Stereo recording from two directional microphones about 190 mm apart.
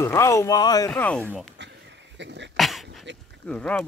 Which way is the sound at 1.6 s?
65° right (ahead or behind).